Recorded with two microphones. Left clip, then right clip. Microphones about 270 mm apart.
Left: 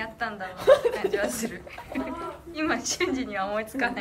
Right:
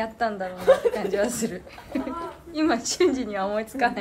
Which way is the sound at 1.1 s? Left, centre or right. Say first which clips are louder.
Right 3 dB; centre.